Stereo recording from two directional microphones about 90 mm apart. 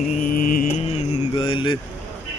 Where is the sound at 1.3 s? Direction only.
70° left (ahead or behind).